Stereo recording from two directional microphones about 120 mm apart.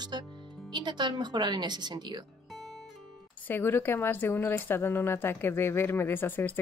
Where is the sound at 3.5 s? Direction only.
15° left (ahead or behind).